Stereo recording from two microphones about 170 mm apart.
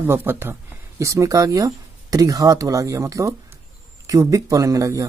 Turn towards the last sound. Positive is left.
turn(degrees=-20)  # may be behind; listen again after turning